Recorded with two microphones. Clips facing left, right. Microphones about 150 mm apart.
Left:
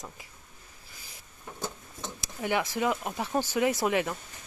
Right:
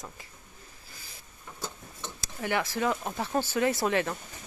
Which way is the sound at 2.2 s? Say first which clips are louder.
Left 1 dB; 15° left (ahead or behind).